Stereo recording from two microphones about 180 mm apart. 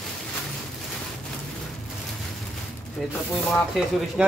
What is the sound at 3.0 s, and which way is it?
Speech, centre (ahead or behind).